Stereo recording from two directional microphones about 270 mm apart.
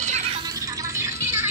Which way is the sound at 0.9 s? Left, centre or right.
Centre.